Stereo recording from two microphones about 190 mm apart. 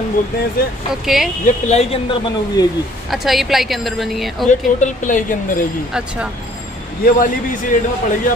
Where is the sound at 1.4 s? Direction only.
35° left (ahead or behind).